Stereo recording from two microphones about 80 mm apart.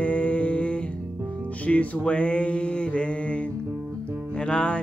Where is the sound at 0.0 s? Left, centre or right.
Centre.